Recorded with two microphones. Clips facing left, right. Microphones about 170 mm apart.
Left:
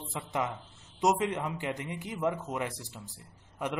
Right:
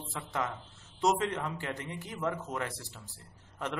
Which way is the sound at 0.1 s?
20° left (ahead or behind).